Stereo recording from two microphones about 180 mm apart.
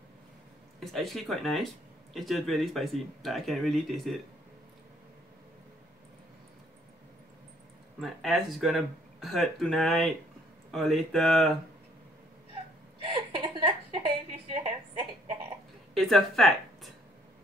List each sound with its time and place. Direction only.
0.7 s speech: centre (ahead or behind)
8.0 s speech: centre (ahead or behind)
13.4 s a sound: 25° right (ahead or behind)
15.9 s speech: centre (ahead or behind)